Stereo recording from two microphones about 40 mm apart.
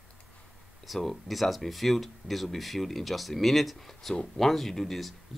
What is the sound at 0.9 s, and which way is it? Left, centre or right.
Speech, centre.